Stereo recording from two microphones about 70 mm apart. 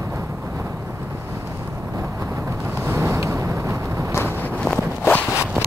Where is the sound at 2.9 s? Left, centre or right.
Right.